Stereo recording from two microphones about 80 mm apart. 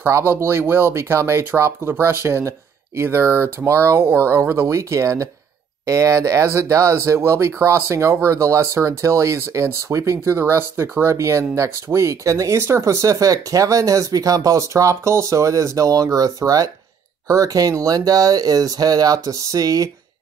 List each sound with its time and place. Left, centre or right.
0.1 s speech: right